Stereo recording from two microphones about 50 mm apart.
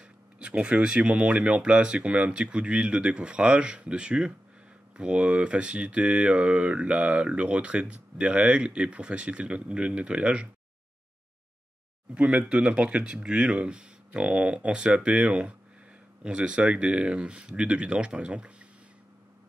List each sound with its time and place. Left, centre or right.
0.0 s speech: right
12.1 s speech: right